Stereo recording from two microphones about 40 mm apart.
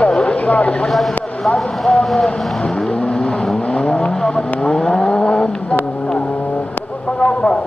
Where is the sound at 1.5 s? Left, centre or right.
Left.